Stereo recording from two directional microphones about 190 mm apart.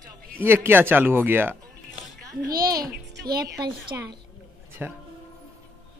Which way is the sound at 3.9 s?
15° right (ahead or behind).